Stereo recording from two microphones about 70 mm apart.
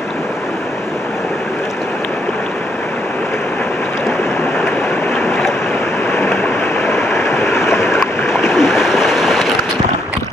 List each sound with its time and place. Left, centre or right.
6.1 s vehicle: left
6.9 s stream: left
8.5 s a sound: centre